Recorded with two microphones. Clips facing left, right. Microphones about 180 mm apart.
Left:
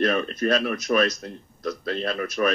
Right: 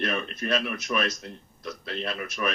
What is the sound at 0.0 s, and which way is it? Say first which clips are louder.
A man's voice: left 7 dB; 40° left (ahead or behind).